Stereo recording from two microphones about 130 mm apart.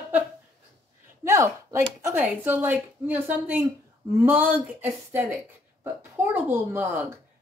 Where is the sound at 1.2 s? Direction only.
20° right (ahead or behind).